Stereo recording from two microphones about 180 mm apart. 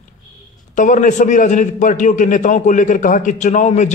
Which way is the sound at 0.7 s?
45° left (ahead or behind).